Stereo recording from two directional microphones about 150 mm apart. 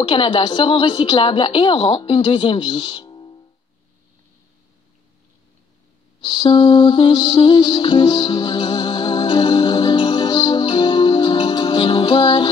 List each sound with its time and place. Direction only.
0.0 s a woman's voice: 35° left (ahead or behind)
6.2 s music: 35° left (ahead or behind)